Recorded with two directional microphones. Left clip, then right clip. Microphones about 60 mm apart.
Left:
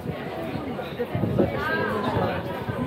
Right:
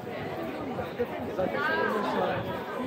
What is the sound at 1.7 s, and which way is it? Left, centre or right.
Chatter, right.